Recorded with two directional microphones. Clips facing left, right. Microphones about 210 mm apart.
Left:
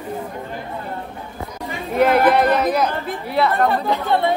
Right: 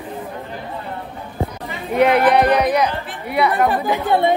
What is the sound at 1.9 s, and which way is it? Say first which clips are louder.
Speech: right 1 dB; centre (ahead or behind).